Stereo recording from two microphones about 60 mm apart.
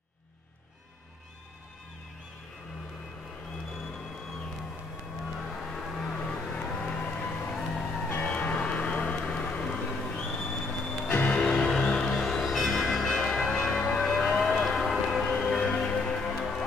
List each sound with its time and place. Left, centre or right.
3.7 s music: centre
5.4 s a sound: centre
5.9 s music: centre
6.1 s vehicle: centre
8.1 s music: left; by 13.3 s centre
13.3 s church bell: centre
15.2 s music: centre